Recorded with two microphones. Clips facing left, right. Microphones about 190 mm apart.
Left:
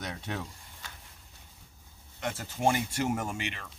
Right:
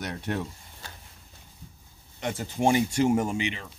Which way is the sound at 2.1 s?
15° right (ahead or behind).